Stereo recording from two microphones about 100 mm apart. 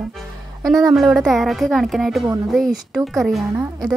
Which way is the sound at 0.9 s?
Centre (ahead or behind).